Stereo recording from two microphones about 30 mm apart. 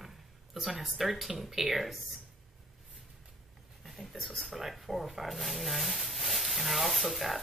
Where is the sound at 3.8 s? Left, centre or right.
Centre.